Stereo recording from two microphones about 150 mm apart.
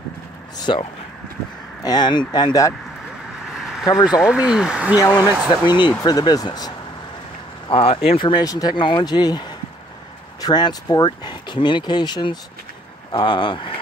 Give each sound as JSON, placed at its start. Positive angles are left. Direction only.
{"t": 0.6, "sound": "speech", "side_deg": 30}
{"t": 3.5, "sound": "vehicle", "side_deg": 0}
{"t": 4.2, "sound": "speech", "side_deg": -5}
{"t": 5.8, "sound": "speech", "side_deg": 30}
{"t": 7.6, "sound": "speech", "side_deg": 40}